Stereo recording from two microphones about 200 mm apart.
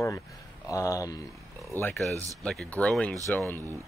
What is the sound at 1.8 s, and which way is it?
Speech, 5° left (ahead or behind).